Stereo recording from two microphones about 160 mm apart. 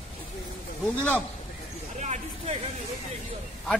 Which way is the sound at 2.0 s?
45° right (ahead or behind).